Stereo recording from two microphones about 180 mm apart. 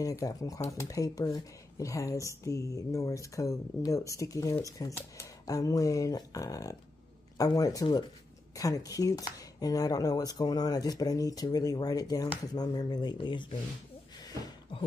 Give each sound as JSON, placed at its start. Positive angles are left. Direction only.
{"t": 0.0, "sound": "speech", "side_deg": 20}